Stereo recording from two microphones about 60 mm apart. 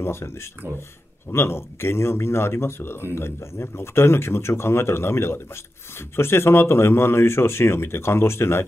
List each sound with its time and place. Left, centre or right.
0.0 s speech: left
1.3 s speech: left